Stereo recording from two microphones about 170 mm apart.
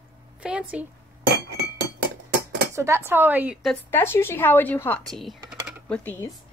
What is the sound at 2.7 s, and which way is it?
Speech, 15° right (ahead or behind).